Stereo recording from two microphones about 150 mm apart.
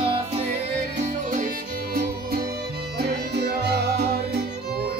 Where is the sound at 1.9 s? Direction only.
90° right.